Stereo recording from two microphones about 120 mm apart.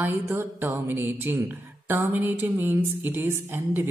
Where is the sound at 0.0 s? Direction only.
20° right (ahead or behind).